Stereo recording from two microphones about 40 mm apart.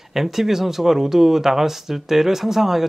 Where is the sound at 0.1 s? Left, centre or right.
Centre.